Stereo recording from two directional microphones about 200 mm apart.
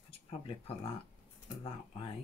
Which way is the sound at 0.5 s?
30° left (ahead or behind).